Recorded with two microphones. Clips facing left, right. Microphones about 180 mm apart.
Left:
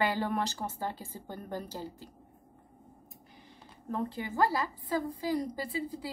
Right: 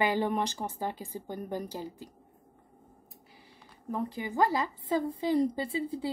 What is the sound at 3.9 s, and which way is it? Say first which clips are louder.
A woman's voice: right 1 dB; 15° right (ahead or behind).